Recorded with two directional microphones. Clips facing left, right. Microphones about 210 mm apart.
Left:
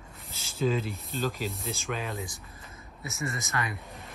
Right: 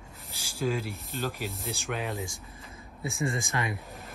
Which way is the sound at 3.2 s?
30° right (ahead or behind).